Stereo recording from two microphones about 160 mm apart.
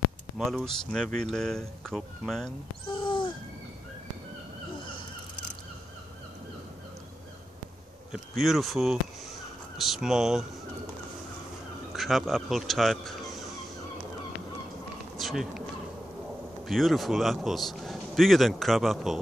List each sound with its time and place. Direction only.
0.4 s a man's voice: centre (ahead or behind)
3.0 s a sound: 30° left (ahead or behind)
8.1 s a man's voice: centre (ahead or behind)
11.9 s speech: centre (ahead or behind)
15.1 s bee: centre (ahead or behind)
16.6 s a man's voice: centre (ahead or behind)